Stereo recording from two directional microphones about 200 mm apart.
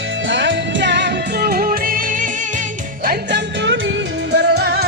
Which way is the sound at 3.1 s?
60° right (ahead or behind).